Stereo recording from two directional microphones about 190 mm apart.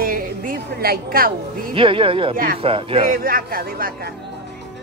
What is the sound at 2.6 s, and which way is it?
Speech, 30° right (ahead or behind).